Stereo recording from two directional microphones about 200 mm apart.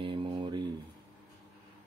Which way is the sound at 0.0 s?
25° right (ahead or behind).